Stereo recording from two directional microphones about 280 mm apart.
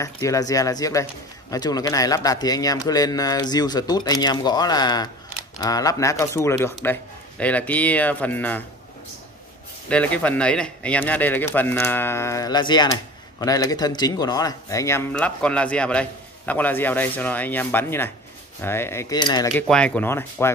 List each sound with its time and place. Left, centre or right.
0.0 s speech: centre
9.8 s speech: centre